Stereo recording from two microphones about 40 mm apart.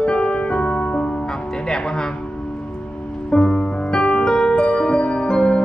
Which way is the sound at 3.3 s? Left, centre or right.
Left.